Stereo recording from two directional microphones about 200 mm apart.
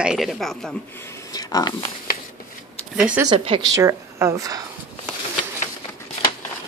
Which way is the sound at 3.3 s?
25° right (ahead or behind).